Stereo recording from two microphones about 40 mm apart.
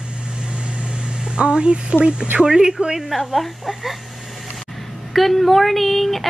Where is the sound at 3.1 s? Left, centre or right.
Centre.